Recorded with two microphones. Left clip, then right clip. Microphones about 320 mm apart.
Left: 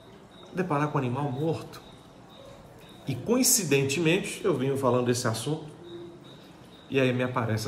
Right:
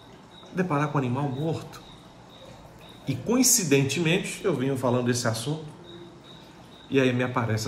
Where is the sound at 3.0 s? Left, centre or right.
Centre.